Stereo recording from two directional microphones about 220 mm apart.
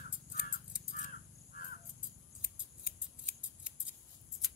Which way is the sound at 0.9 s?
40° left (ahead or behind).